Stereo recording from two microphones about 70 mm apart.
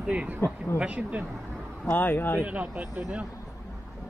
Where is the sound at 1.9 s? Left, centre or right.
Left.